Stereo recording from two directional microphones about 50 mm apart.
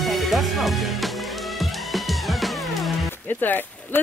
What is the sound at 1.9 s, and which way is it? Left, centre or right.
Music, centre.